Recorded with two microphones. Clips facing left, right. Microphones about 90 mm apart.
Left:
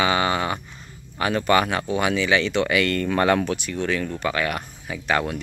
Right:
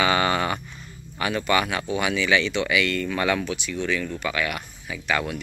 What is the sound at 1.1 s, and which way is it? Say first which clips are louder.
Speech: left 3 dB; 35° left (ahead or behind).